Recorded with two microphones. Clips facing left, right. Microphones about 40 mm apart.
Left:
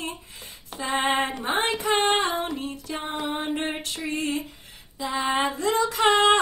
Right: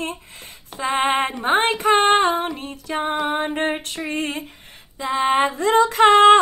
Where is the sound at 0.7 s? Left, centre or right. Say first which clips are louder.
Right 4 dB; right.